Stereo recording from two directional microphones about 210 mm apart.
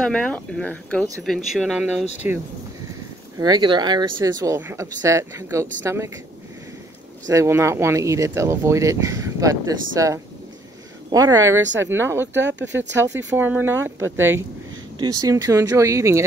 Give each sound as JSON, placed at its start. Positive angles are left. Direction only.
{"t": 0.0, "sound": "speech", "side_deg": 5}
{"t": 3.3, "sound": "speech", "side_deg": -20}
{"t": 7.2, "sound": "speech", "side_deg": -15}
{"t": 12.4, "sound": "speech", "side_deg": -60}
{"t": 13.4, "sound": "speech", "side_deg": -10}